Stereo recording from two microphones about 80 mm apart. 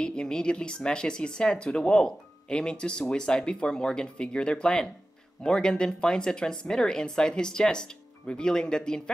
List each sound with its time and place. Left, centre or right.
0.0 s speech: centre